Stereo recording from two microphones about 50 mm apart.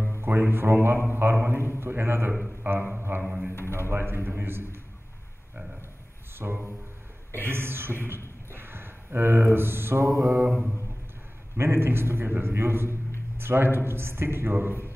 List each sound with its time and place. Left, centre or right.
0.2 s a man's voice: right
3.2 s speech: centre
3.7 s a man's voice: right
6.3 s a man's voice: right
8.5 s a sound: right
10.0 s mantra: centre
11.5 s a man's voice: right